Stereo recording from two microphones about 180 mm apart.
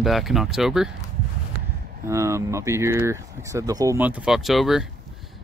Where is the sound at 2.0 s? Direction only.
15° right (ahead or behind).